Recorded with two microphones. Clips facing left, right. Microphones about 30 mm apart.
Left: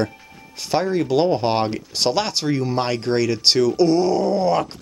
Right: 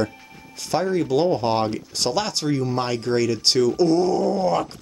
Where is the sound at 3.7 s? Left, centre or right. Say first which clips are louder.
Left 2 dB; left.